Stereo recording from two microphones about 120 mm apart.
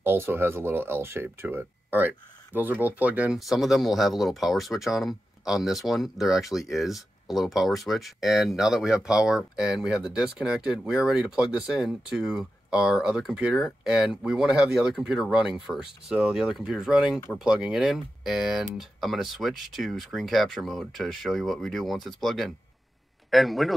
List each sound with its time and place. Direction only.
0.0 s speech: 20° right (ahead or behind)
3.3 s speech: centre (ahead or behind)